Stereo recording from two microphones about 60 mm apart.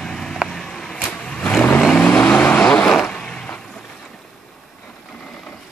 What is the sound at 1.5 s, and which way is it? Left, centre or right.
Vehicle, centre.